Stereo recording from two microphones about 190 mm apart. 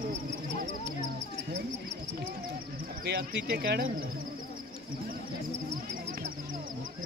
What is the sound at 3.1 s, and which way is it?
Speech, 60° right (ahead or behind).